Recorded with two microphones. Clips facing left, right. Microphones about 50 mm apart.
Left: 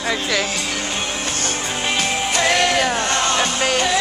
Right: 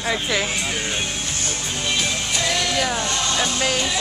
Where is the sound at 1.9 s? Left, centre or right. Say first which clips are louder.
Left 4 dB; left.